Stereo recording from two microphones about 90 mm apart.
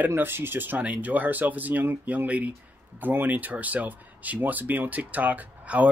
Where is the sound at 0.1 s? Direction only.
25° right (ahead or behind).